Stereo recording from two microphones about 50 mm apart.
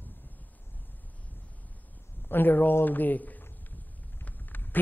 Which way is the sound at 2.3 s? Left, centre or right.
Left.